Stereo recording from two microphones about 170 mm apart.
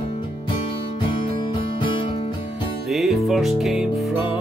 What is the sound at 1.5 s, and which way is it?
Music, 30° left (ahead or behind).